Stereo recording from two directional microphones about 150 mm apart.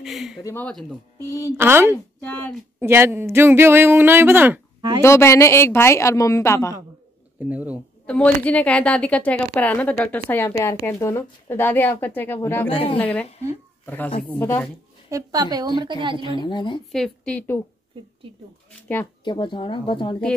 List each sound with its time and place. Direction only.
0.0 s speech: centre (ahead or behind)
0.4 s a woman's voice: 20° left (ahead or behind)
1.6 s speech: 15° right (ahead or behind)
2.1 s speech: 15° left (ahead or behind)
2.8 s speech: 15° right (ahead or behind)
5.0 s a woman's voice: 20° left (ahead or behind)
7.3 s speech: 10° right (ahead or behind)
8.1 s speech: 10° left (ahead or behind)
12.6 s speech: 40° left (ahead or behind)
13.8 s speech: 10° left (ahead or behind)
15.0 s a woman's voice: 25° right (ahead or behind)
16.4 s speech: 30° left (ahead or behind)
16.9 s speech: 5° left (ahead or behind)
19.2 s speech: 30° left (ahead or behind)